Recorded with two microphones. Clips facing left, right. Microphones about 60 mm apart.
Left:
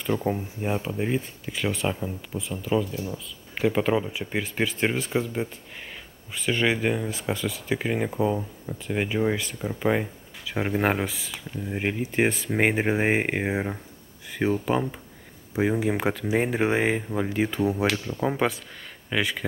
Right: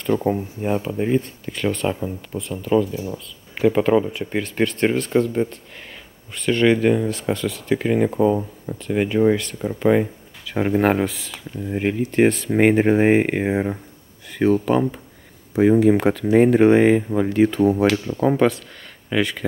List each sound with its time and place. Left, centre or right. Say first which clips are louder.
0.2 s speech: right 5 dB; centre